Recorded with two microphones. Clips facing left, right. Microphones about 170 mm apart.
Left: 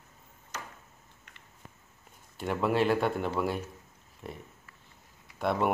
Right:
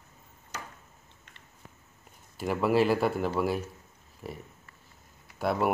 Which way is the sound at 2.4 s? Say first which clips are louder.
Right 3 dB; 5° right (ahead or behind).